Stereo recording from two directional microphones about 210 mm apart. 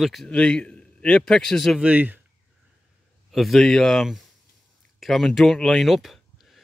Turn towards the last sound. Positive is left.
turn(degrees=0)  # may be behind; listen again after turning